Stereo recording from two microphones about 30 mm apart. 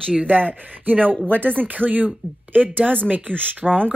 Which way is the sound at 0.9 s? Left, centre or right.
Right.